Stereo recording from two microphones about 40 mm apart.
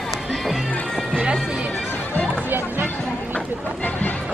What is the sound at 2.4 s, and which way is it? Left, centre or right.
Music, right.